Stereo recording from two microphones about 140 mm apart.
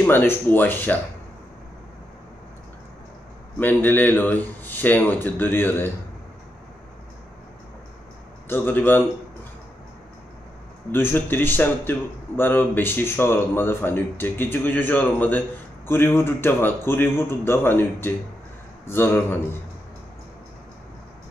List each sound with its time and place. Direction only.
0.0 s speech: 15° left (ahead or behind)
3.5 s speech: 15° left (ahead or behind)
8.5 s speech: 15° left (ahead or behind)
10.9 s speech: 15° left (ahead or behind)